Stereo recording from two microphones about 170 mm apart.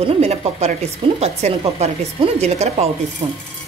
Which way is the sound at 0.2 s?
40° right (ahead or behind).